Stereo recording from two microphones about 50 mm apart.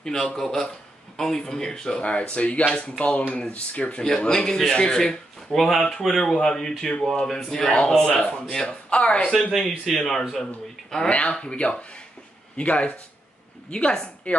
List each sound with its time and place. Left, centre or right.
0.0 s speech: centre
5.9 s speech: centre
7.2 s speech: centre
7.5 s speech: centre
9.6 s a woman's voice: centre